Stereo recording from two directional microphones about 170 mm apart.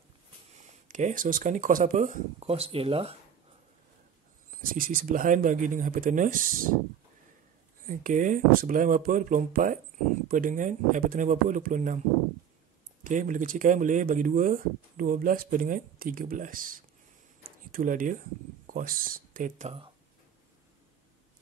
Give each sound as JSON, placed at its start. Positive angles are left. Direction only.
{"t": 0.6, "sound": "speech", "side_deg": -50}
{"t": 4.5, "sound": "speech", "side_deg": -55}
{"t": 7.8, "sound": "speech", "side_deg": -55}
{"t": 13.0, "sound": "speech", "side_deg": -50}
{"t": 17.4, "sound": "a sound", "side_deg": -55}
{"t": 18.7, "sound": "speech", "side_deg": -55}